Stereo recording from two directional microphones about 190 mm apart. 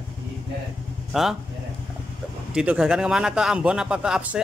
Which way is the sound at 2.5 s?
5° right (ahead or behind).